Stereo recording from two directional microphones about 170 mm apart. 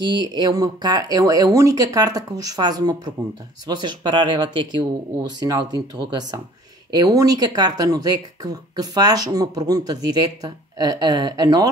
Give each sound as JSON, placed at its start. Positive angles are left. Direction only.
{"t": 0.3, "sound": "speech", "side_deg": -25}